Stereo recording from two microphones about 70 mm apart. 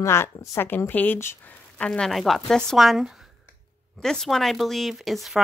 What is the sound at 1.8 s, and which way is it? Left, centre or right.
Speech, centre.